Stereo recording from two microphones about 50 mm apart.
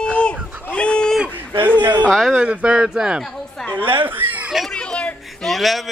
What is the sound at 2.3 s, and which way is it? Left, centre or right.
Speech, centre.